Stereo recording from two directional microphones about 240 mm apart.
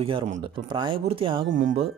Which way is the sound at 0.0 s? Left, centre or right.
Right.